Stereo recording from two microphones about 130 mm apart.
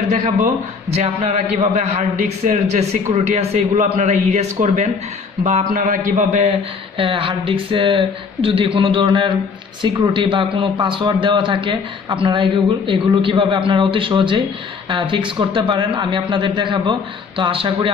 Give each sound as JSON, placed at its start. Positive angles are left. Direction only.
{"t": 0.8, "sound": "a man's voice", "side_deg": -55}
{"t": 5.4, "sound": "speech", "side_deg": -75}
{"t": 7.0, "sound": "a man's voice", "side_deg": -40}